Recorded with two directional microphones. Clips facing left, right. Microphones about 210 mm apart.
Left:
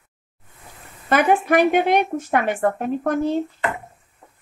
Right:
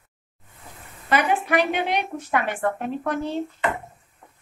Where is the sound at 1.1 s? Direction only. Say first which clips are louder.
Left 4 dB; 50° left (ahead or behind).